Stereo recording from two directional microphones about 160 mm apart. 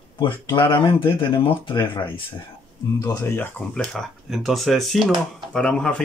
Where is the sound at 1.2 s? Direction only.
30° left (ahead or behind).